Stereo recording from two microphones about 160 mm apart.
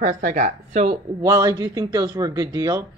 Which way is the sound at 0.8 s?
25° right (ahead or behind).